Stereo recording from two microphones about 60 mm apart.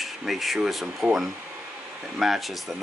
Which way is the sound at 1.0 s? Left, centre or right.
Centre.